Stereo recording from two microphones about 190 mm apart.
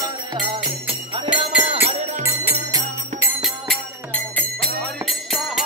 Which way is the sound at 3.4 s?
5° left (ahead or behind).